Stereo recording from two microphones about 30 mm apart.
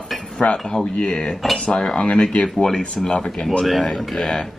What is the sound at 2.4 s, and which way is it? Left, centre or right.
Speech, left.